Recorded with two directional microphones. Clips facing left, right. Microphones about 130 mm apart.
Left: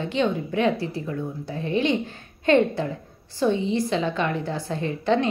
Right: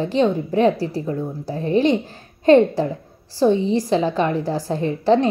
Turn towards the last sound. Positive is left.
turn(degrees=-35)  # may be behind; listen again after turning